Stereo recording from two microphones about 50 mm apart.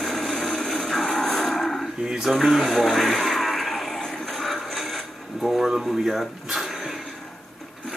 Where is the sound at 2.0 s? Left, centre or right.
Centre.